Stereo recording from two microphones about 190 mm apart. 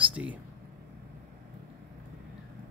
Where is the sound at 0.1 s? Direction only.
5° right (ahead or behind).